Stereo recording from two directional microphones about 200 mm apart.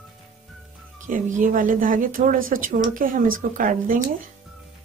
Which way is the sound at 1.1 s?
40° right (ahead or behind).